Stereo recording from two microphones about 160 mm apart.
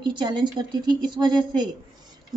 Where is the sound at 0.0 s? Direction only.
30° right (ahead or behind).